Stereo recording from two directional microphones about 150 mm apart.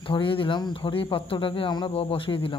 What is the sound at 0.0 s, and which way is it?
Speech, 35° left (ahead or behind).